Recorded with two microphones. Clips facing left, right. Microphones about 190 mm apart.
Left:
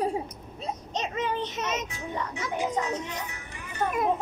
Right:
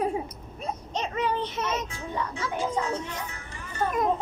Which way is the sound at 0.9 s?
20° left (ahead or behind).